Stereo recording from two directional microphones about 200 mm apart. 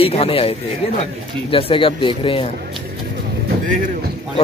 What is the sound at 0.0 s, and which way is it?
Speech, 30° left (ahead or behind).